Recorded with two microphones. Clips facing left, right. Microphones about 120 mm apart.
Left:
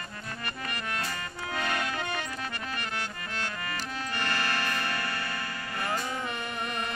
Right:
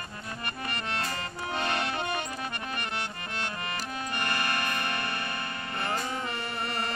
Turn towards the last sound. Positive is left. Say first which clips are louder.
# even
turn(degrees=-20)  # may be behind; listen again after turning